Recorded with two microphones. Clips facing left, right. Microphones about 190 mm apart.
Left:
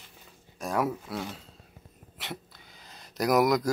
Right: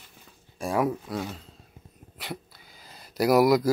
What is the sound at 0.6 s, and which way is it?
Speech, centre (ahead or behind).